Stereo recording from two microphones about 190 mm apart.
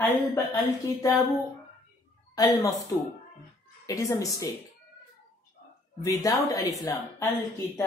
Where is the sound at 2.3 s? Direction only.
20° left (ahead or behind).